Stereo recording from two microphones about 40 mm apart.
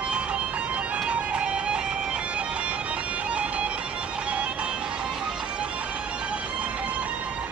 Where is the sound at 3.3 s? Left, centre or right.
Right.